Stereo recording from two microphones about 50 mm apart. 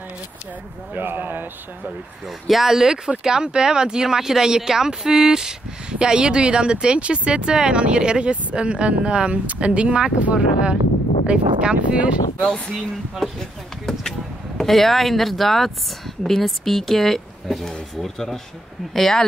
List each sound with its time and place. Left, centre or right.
0.9 s speech: right
2.2 s speech: centre; by 12.1 s right
12.4 s speech: centre
14.6 s speech: centre